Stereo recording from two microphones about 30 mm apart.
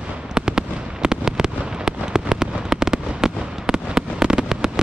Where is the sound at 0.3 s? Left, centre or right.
Right.